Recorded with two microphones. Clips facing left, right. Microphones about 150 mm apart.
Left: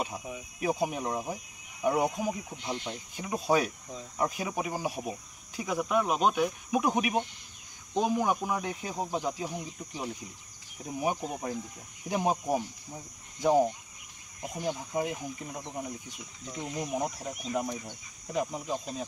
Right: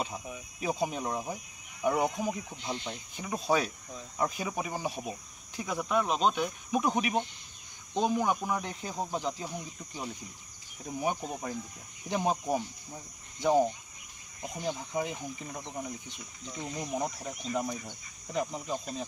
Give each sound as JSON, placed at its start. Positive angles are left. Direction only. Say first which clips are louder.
{"t": 0.0, "sound": "speech", "louder": "left 1 dB", "side_deg": 10}